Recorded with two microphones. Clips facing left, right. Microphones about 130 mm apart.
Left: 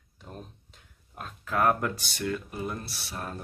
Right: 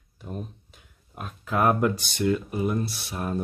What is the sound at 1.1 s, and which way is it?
Speech, 15° right (ahead or behind).